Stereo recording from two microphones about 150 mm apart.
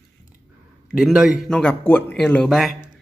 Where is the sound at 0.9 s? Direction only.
Centre (ahead or behind).